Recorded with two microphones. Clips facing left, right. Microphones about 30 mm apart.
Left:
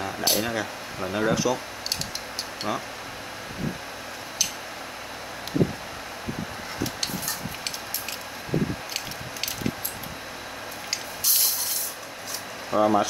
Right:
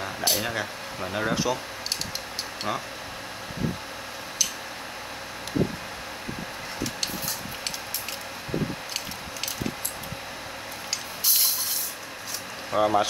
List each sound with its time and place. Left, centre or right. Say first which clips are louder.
0.0 s speech: left 1 dB; centre
1.3 s speech: left 1 dB; centre
12.7 s speech: left 1 dB; centre